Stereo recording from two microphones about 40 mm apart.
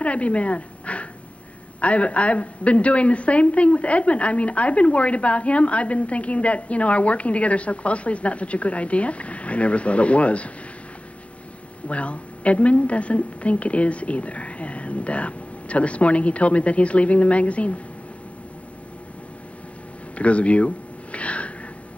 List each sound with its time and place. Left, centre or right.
0.0 s dog: left
1.8 s a woman's voice: left
11.9 s a woman's voice: left
20.2 s a sound: left